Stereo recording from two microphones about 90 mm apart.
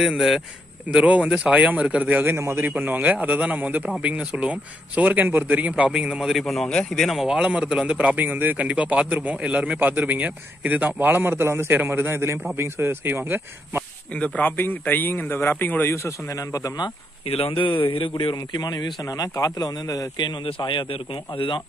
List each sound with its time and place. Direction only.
0.0 s a man's voice: 5° right (ahead or behind)
0.8 s speech: 15° right (ahead or behind)
14.1 s a man's voice: 15° left (ahead or behind); by 16.9 s 50° left (ahead or behind)
17.4 s a man's voice: 80° left; by 20.2 s 45° left (ahead or behind)
20.2 s a man's voice: 75° left (ahead or behind)